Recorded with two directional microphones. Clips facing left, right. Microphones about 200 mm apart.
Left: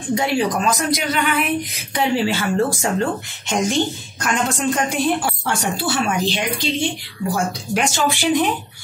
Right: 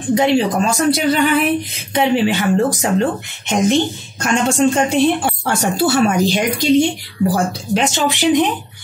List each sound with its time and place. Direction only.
0.1 s speech: 20° right (ahead or behind)
5.4 s speech: 40° right (ahead or behind)
7.7 s speech: 20° right (ahead or behind)